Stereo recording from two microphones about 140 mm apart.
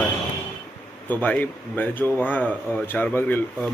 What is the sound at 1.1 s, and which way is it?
Speech, 10° left (ahead or behind).